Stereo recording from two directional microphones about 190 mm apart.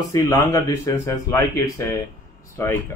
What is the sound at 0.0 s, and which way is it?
A man's voice, 20° left (ahead or behind).